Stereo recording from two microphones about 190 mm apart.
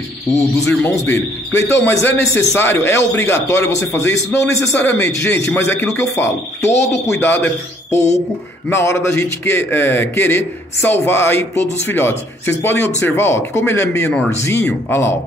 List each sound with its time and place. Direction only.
0.3 s a man's voice: 15° left (ahead or behind)
6.7 s a man's voice: 35° left (ahead or behind)
7.1 s a man's voice: 10° left (ahead or behind)